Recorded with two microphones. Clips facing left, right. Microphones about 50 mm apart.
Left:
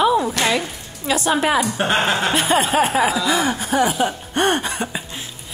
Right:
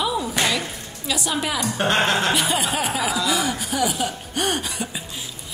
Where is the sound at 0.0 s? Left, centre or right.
Left.